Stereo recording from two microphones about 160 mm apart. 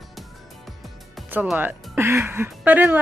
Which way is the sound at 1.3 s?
10° right (ahead or behind).